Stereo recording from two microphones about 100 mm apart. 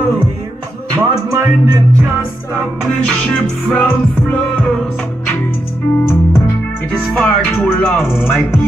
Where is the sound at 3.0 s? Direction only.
15° left (ahead or behind).